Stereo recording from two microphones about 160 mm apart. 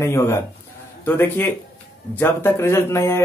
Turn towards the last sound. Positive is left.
turn(degrees=15)  # may be behind; listen again after turning